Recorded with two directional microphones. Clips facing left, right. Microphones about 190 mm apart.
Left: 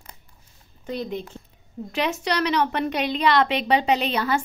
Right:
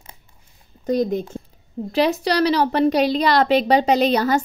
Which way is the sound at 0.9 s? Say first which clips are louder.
Right 9 dB; 45° right (ahead or behind).